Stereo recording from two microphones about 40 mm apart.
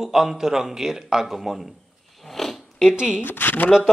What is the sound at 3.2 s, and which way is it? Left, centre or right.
Speech, left.